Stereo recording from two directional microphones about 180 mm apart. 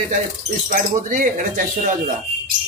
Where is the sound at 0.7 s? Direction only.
45° right (ahead or behind).